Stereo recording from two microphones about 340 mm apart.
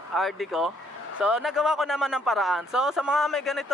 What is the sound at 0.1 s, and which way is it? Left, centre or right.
Speech, centre.